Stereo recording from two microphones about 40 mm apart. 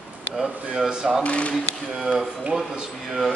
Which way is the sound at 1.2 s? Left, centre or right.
Left.